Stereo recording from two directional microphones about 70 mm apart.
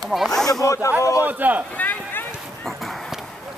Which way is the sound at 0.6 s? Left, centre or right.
Left.